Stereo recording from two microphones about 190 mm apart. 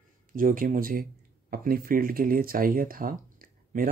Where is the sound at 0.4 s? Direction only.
45° right (ahead or behind).